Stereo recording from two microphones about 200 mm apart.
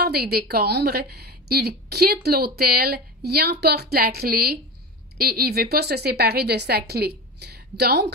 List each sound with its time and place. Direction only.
0.0 s a woman's voice: 50° right (ahead or behind)